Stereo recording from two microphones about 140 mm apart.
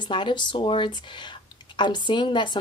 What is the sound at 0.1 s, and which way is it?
Speech, 35° left (ahead or behind).